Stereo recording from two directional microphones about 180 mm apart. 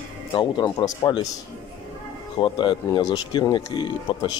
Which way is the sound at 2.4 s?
25° left (ahead or behind).